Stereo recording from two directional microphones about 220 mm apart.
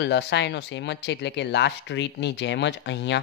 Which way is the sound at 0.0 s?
50° left (ahead or behind).